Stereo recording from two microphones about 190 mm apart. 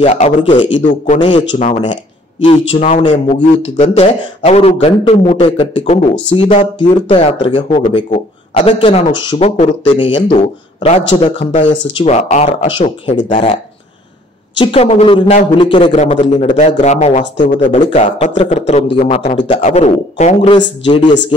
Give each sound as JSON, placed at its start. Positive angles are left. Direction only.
{"t": 0.0, "sound": "a man's voice", "side_deg": 35}
{"t": 0.7, "sound": "a man's voice", "side_deg": 40}
{"t": 1.5, "sound": "a man's voice", "side_deg": 30}
{"t": 14.6, "sound": "speech", "side_deg": 30}
{"t": 16.0, "sound": "a man's voice", "side_deg": 35}
{"t": 20.5, "sound": "speech", "side_deg": 25}